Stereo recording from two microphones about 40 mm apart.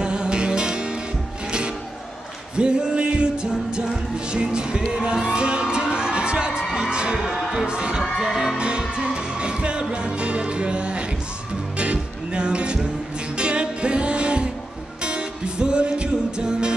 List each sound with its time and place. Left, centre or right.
0.0 s music: right
2.5 s music: right
7.2 s music: centre
7.6 s heart sounds: right
8.2 s music: centre
8.5 s music: right